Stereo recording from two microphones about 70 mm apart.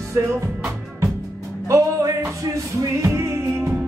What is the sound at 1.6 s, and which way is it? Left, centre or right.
Music, right.